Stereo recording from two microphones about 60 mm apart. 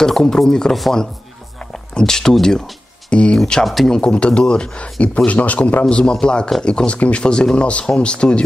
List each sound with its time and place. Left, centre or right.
0.0 s speech: centre
1.6 s a sound: centre
3.3 s speech: centre
3.9 s speech: centre
5.9 s speech: centre